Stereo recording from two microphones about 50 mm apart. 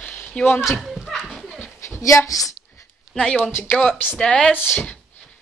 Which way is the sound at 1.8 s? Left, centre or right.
Left.